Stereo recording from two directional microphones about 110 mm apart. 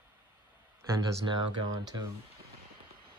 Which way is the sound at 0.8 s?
30° right (ahead or behind).